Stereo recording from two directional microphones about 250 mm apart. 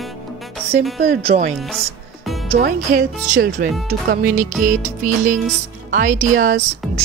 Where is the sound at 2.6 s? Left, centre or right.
Right.